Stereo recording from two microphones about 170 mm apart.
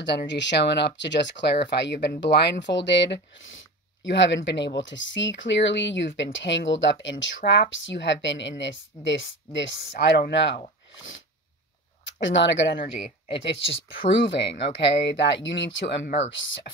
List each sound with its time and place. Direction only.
0.3 s speech: 90° left
12.0 s speech: 90° left